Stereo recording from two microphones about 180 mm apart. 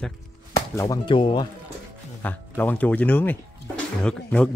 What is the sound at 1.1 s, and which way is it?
Speech, 25° left (ahead or behind).